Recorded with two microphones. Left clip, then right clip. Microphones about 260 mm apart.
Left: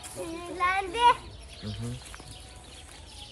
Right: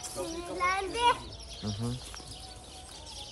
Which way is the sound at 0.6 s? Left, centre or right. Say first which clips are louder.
Left 4 dB; left.